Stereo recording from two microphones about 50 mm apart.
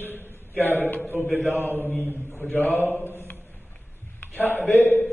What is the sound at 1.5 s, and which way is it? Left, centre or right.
A man's voice, left.